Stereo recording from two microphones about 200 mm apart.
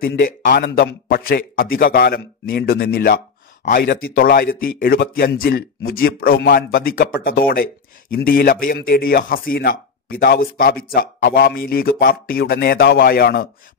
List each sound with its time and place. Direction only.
0.0 s speech: 50° left (ahead or behind)